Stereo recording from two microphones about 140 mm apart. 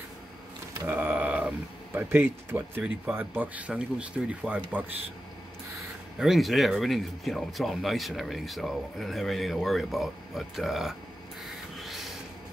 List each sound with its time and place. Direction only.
0.8 s a sound: 10° right (ahead or behind)
2.0 s speech: 15° right (ahead or behind)
6.1 s speech: centre (ahead or behind)
11.4 s rub: centre (ahead or behind)